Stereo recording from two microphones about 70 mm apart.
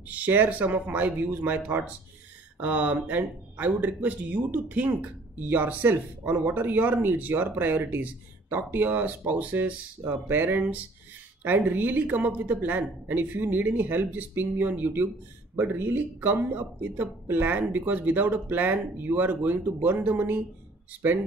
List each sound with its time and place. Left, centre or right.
0.1 s speech: right